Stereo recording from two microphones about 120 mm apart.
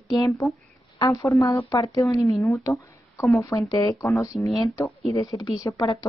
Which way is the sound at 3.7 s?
30° left (ahead or behind).